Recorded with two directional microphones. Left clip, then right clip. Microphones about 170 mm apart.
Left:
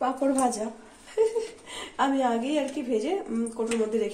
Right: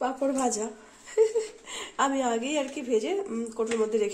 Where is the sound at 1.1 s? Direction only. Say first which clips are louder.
Right 1 dB; 75° right (ahead or behind).